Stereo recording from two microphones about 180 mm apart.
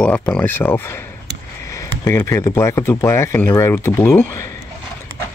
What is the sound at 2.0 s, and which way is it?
Speech, 15° left (ahead or behind).